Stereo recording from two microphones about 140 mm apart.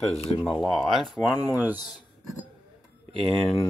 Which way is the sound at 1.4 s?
15° right (ahead or behind).